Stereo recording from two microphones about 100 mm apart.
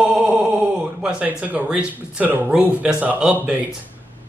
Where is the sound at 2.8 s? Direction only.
10° right (ahead or behind).